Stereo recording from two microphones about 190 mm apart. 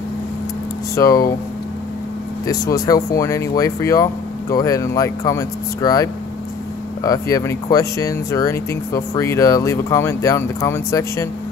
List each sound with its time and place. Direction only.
0.9 s speech: 20° left (ahead or behind)
2.4 s speech: 20° left (ahead or behind)